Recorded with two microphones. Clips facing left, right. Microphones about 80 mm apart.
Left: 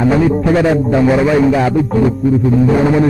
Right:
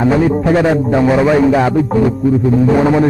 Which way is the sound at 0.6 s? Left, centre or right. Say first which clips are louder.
Even; right.